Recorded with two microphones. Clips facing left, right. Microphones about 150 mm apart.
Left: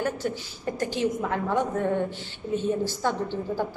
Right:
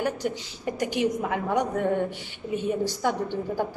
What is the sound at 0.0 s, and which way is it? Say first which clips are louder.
A woman's voice: right 1 dB; 15° right (ahead or behind).